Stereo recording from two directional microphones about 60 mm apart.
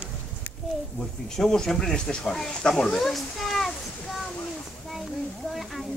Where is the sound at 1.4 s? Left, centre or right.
Centre.